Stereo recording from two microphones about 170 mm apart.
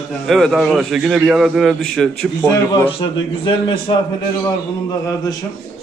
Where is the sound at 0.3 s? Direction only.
Centre (ahead or behind).